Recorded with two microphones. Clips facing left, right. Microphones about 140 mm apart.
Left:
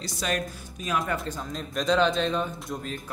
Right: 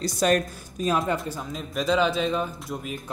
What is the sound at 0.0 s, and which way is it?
Speech, 45° right (ahead or behind).